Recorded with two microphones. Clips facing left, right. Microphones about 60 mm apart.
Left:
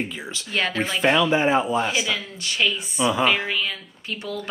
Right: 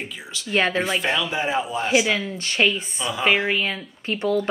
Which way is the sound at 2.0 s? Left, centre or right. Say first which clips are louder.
Right 4 dB; right.